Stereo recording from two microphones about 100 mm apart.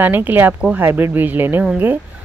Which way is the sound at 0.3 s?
20° right (ahead or behind).